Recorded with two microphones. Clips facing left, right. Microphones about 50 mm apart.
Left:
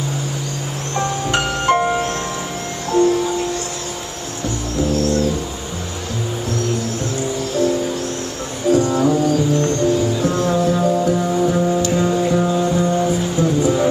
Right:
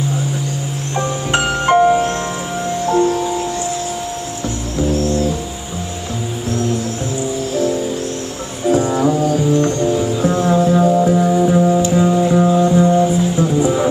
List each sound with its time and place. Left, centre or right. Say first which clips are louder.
0.9 s music: right 1 dB; centre
1.8 s music: right 6 dB; centre
2.9 s music: even; right
8.7 s music: even; centre